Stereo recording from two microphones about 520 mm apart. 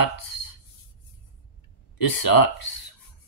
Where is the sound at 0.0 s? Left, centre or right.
Left.